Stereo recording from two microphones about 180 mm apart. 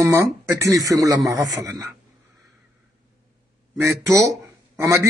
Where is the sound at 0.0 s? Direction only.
15° right (ahead or behind).